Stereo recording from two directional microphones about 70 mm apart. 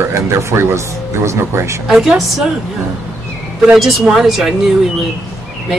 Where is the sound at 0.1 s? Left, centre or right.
Right.